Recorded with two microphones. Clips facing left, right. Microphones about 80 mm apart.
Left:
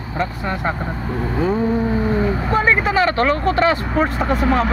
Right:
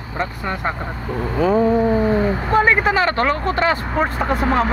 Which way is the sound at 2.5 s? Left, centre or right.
Right.